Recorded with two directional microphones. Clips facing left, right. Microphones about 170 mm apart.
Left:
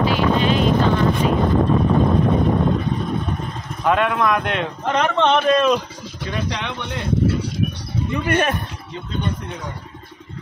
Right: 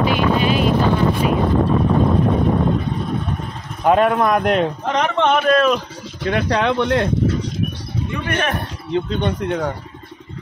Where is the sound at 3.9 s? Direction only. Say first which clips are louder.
Right 4 dB; 35° right (ahead or behind).